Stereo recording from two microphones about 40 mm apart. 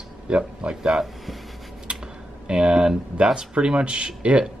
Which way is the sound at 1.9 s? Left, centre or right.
Right.